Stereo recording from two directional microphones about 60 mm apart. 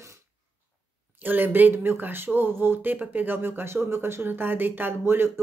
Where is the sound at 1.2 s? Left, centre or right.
Right.